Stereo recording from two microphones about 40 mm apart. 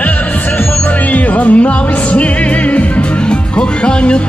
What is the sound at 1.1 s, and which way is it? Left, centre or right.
Music, left.